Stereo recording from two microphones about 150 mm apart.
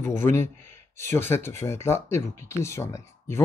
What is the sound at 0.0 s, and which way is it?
Speech, 15° left (ahead or behind).